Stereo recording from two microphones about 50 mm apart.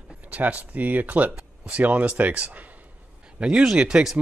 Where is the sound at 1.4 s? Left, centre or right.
Right.